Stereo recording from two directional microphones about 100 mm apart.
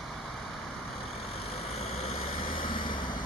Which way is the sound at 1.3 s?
75° left (ahead or behind).